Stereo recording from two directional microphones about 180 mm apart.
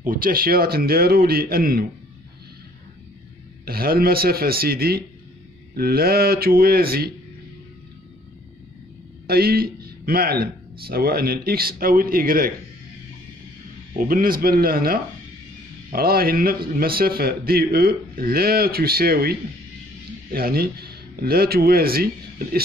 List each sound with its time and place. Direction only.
0.0 s a man's voice: 50° right (ahead or behind)
3.6 s a man's voice: 55° right (ahead or behind)
9.3 s a man's voice: 60° right (ahead or behind)
13.9 s a man's voice: 50° right (ahead or behind)
20.3 s speech: 55° right (ahead or behind)